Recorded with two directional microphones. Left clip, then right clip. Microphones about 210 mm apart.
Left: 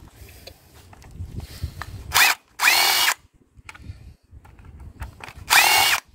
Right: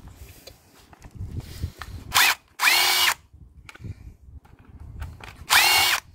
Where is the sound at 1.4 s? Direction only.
20° left (ahead or behind).